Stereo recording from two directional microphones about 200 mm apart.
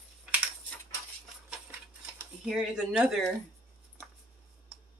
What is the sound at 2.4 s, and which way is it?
Speech, centre (ahead or behind).